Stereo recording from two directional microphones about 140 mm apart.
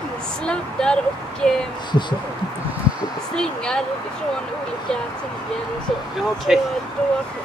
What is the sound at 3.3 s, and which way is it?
Speech, 5° left (ahead or behind).